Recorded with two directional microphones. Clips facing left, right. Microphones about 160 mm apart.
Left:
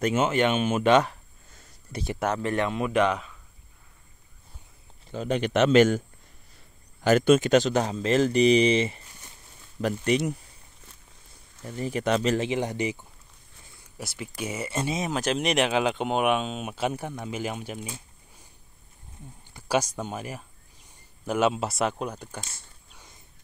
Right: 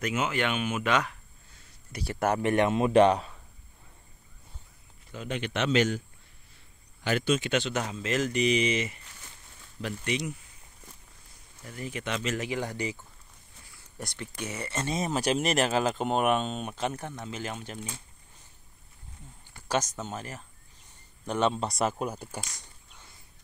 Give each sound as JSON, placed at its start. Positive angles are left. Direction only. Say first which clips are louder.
{"t": 0.0, "sound": "speech", "louder": "left 6 dB", "side_deg": 30}
{"t": 2.3, "sound": "speech", "louder": "right 2 dB", "side_deg": -20}
{"t": 5.1, "sound": "a man's voice", "louder": "left 8 dB", "side_deg": 40}
{"t": 9.8, "sound": "a man's voice", "louder": "left 7 dB", "side_deg": 45}
{"t": 11.6, "sound": "speech", "louder": "left 8 dB", "side_deg": 30}
{"t": 12.4, "sound": "speech", "louder": "left 5 dB", "side_deg": 20}
{"t": 13.9, "sound": "speech", "louder": "left 2 dB", "side_deg": 5}
{"t": 15.1, "sound": "speech", "louder": "left 1 dB", "side_deg": -5}
{"t": 19.5, "sound": "speech", "louder": "left 4 dB", "side_deg": 10}